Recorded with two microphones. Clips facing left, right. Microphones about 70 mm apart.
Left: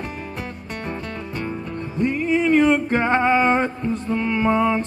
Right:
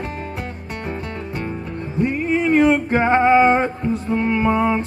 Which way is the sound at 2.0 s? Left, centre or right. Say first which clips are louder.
Even; right.